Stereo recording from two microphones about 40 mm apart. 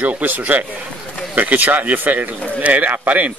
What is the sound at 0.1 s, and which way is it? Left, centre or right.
Speech, right.